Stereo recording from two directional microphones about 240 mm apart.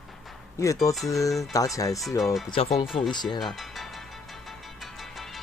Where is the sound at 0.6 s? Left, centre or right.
Centre.